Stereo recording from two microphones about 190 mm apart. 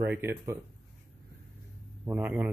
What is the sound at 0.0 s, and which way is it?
Speech, 10° right (ahead or behind).